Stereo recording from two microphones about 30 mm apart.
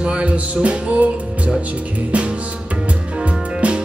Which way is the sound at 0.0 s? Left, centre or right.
Right.